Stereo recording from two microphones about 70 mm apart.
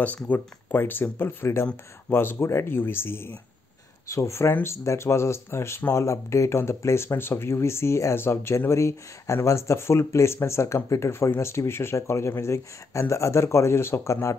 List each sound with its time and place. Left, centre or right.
0.0 s speech: left